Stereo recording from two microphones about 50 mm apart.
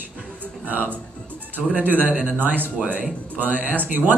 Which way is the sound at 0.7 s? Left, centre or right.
Right.